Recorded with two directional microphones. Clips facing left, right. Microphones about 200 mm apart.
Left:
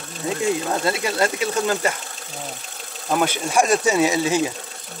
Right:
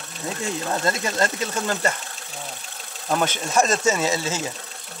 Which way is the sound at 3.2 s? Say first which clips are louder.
Left 2 dB; 10° left (ahead or behind).